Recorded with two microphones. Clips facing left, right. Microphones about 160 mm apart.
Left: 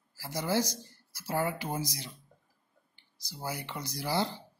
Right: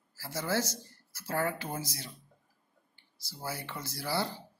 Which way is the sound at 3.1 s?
15° left (ahead or behind).